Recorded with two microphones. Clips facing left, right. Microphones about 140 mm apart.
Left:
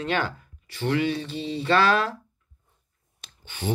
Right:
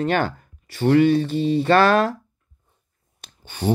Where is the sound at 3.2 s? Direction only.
40° right (ahead or behind).